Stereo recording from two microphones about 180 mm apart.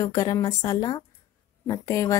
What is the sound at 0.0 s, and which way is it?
A woman's voice, 20° left (ahead or behind).